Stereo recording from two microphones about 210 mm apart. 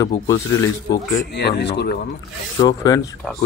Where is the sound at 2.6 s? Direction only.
15° left (ahead or behind).